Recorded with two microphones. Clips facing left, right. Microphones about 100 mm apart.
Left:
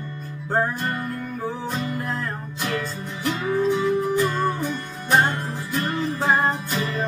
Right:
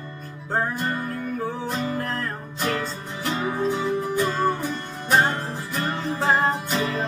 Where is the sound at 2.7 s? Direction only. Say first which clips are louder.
Left 1 dB; 35° right (ahead or behind).